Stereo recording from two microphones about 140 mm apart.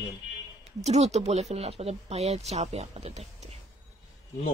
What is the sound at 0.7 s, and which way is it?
Speech, 50° right (ahead or behind).